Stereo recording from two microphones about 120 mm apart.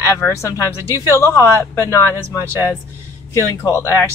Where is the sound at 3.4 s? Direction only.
25° left (ahead or behind).